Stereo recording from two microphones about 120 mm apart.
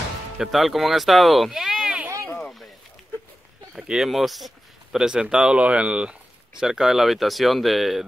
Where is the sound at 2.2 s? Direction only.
10° left (ahead or behind).